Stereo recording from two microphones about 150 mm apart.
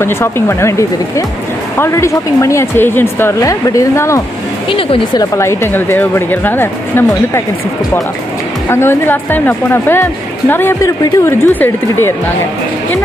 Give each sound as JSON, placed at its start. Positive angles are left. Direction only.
{"t": 0.0, "sound": "a woman's voice", "side_deg": 15}
{"t": 4.6, "sound": "a woman's voice", "side_deg": 35}
{"t": 8.6, "sound": "a woman's voice", "side_deg": 15}